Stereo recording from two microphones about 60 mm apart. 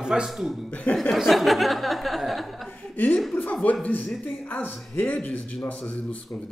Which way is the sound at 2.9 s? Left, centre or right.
Left.